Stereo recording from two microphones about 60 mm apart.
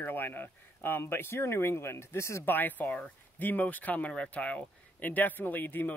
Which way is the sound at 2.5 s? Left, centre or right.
Left.